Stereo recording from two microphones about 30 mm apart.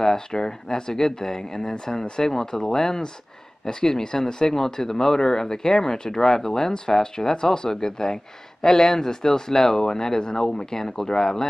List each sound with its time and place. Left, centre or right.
0.0 s speech: centre